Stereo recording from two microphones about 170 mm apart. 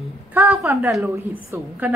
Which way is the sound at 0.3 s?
15° right (ahead or behind).